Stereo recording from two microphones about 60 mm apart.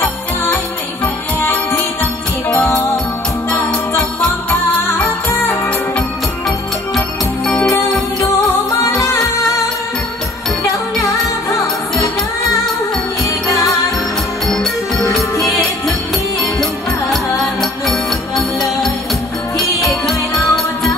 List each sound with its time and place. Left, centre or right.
3.7 s jingle bell: centre
4.5 s music: left
8.8 s music: left
17.1 s music: centre
19.9 s music: centre